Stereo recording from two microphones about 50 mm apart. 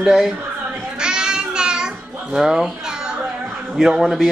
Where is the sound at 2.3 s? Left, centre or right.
Centre.